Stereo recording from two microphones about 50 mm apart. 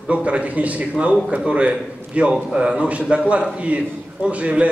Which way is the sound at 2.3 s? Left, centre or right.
Centre.